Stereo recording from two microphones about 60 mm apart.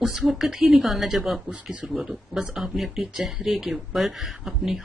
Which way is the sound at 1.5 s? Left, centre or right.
Right.